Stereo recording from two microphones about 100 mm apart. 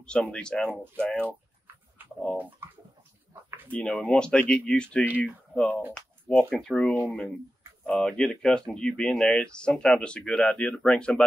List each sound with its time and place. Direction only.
0.0 s speech: 10° left (ahead or behind)
2.0 s bird: 20° right (ahead or behind)
3.4 s a sound: 20° right (ahead or behind)
3.7 s speech: 10° left (ahead or behind)